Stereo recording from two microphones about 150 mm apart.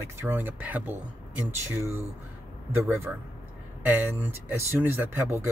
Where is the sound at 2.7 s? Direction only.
15° right (ahead or behind).